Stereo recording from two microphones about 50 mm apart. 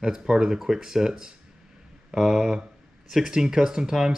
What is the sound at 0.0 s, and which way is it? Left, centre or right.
Speech, centre.